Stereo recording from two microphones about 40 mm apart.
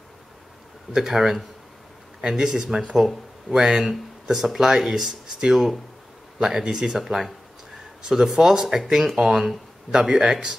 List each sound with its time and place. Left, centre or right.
0.9 s speech: centre
3.5 s speech: centre
7.0 s speech: centre